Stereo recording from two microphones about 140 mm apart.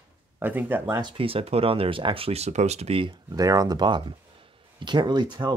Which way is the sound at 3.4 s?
25° right (ahead or behind).